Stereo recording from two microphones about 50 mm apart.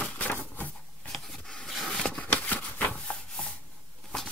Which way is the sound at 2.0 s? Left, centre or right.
Centre.